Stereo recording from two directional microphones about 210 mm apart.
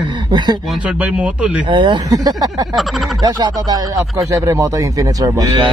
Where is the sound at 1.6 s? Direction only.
20° right (ahead or behind).